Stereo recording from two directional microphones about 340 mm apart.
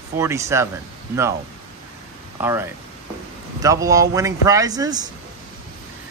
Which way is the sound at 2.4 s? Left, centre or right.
Centre.